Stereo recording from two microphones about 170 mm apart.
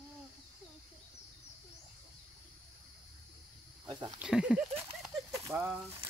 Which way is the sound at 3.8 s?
25° right (ahead or behind).